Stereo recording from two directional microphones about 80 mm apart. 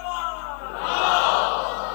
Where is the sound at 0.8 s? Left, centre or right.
Centre.